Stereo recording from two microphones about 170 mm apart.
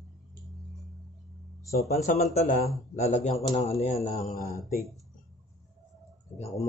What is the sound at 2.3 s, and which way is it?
A man's voice, 50° left (ahead or behind).